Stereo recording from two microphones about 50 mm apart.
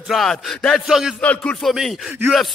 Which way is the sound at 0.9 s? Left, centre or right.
Centre.